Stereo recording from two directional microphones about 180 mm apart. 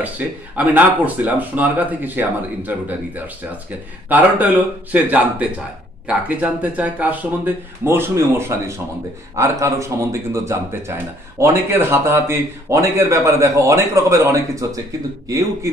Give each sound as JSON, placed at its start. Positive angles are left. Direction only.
{"t": 0.2, "sound": "speech", "side_deg": -10}
{"t": 4.1, "sound": "a man's voice", "side_deg": -10}